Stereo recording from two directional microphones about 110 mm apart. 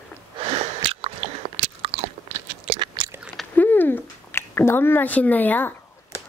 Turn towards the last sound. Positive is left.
turn(degrees=15)  # may be behind; listen again after turning